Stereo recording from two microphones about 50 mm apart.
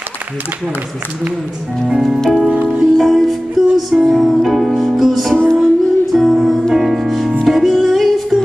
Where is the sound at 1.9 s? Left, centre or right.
Centre.